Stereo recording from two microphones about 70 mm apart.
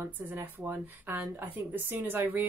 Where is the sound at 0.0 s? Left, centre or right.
Right.